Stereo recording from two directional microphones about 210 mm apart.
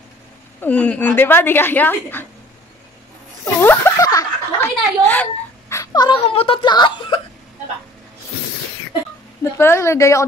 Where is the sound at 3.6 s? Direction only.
10° left (ahead or behind).